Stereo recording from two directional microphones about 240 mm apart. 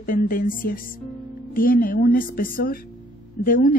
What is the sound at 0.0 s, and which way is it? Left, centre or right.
A woman's voice, left.